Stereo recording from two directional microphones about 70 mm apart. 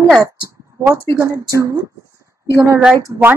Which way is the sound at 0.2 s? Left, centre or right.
Right.